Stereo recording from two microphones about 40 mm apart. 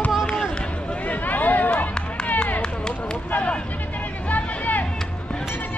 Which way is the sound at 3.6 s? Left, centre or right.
Left.